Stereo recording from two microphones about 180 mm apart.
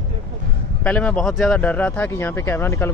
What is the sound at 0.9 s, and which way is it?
Speech, 5° left (ahead or behind).